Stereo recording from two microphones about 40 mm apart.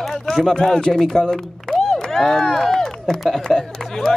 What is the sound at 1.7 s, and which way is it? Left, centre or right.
Crowd, centre.